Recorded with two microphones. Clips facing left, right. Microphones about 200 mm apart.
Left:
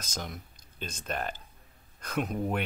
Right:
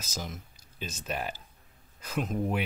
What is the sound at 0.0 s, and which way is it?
Speech, 5° right (ahead or behind).